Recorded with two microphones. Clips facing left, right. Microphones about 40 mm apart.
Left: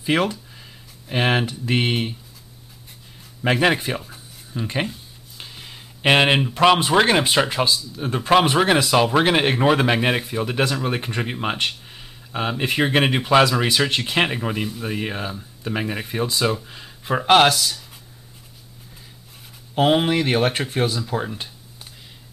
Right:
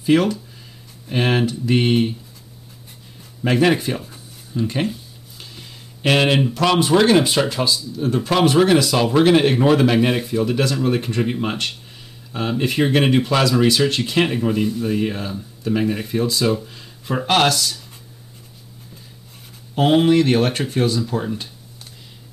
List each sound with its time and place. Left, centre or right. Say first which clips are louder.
0.0 s speech: right 4 dB; centre
3.5 s speech: right 4 dB; centre
5.4 s a sound: left 1 dB; centre
6.5 s speech: left 1 dB; left
19.7 s speech: right 3 dB; centre